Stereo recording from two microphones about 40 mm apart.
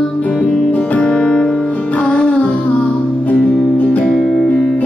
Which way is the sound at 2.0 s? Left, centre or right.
Left.